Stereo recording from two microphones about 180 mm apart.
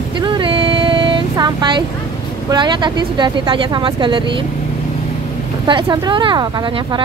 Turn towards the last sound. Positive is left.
turn(degrees=-25)  # may be behind; listen again after turning